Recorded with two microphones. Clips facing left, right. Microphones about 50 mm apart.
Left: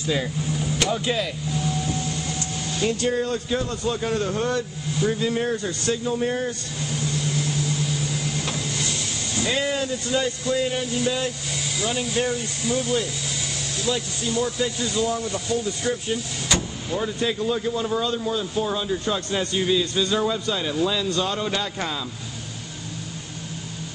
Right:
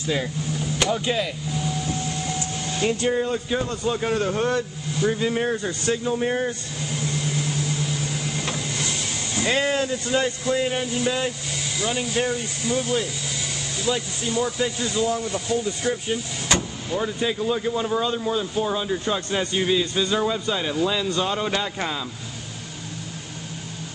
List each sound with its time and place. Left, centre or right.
0.9 s speech: centre
2.8 s a man's voice: right
9.5 s a man's voice: right; by 22.0 s centre